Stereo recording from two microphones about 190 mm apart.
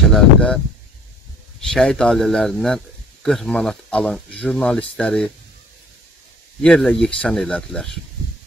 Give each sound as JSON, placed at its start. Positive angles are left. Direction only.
{"t": 0.1, "sound": "speech", "side_deg": 5}
{"t": 1.6, "sound": "speech", "side_deg": 0}
{"t": 6.6, "sound": "speech", "side_deg": 5}